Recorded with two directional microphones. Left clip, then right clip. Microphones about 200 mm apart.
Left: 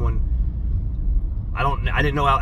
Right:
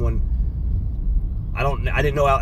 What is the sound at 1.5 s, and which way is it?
Speech, 20° right (ahead or behind).